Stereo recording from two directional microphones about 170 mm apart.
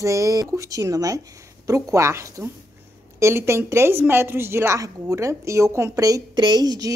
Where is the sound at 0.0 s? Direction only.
20° right (ahead or behind).